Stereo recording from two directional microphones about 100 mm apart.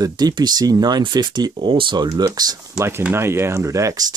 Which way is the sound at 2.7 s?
25° right (ahead or behind).